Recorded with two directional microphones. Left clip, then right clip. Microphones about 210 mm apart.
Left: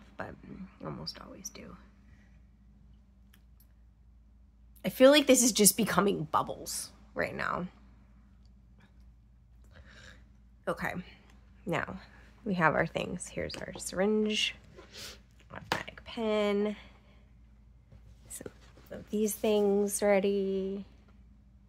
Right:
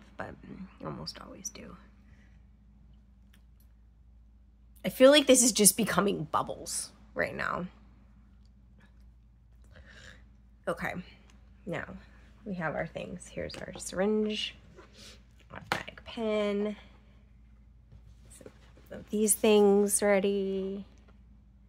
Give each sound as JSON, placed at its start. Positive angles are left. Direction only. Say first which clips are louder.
{"t": 0.0, "sound": "speech", "louder": "right 1 dB", "side_deg": -5}
{"t": 4.8, "sound": "speech", "louder": "right 1 dB", "side_deg": 0}
{"t": 9.8, "sound": "a sound", "louder": "right 2 dB", "side_deg": 0}
{"t": 11.6, "sound": "speech", "louder": "left 4 dB", "side_deg": 20}
{"t": 13.2, "sound": "speech", "louder": "left 1 dB", "side_deg": 10}
{"t": 14.2, "sound": "speech", "louder": "left 3 dB", "side_deg": 15}
{"t": 14.9, "sound": "speech", "louder": "left 8 dB", "side_deg": 30}
{"t": 15.4, "sound": "speech", "louder": "right 1 dB", "side_deg": 0}
{"t": 18.4, "sound": "speech", "louder": "left 5 dB", "side_deg": 30}
{"t": 18.9, "sound": "a woman's voice", "louder": "right 2 dB", "side_deg": 0}